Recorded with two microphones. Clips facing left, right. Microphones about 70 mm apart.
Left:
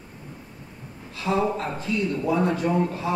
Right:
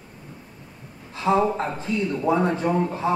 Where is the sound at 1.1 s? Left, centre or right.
Right.